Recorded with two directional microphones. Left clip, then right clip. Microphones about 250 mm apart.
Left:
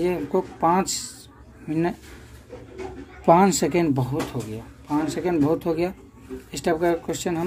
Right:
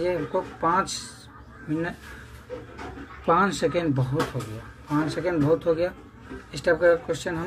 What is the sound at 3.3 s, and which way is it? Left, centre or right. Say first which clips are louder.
Speech: left 4 dB; left.